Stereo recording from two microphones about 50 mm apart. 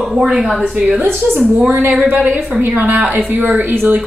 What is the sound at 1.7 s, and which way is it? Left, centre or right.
A woman's voice, right.